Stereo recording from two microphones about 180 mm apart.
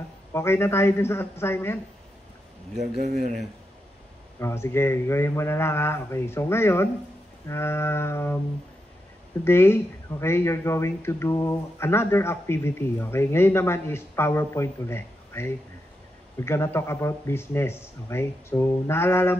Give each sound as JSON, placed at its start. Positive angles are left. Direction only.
{"t": 0.3, "sound": "speech", "side_deg": 15}
{"t": 3.0, "sound": "speech", "side_deg": -60}
{"t": 4.4, "sound": "speech", "side_deg": 15}
{"t": 9.4, "sound": "speech", "side_deg": 15}